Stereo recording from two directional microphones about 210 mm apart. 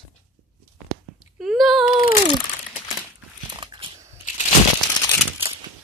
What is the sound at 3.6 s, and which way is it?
Dog, 25° right (ahead or behind).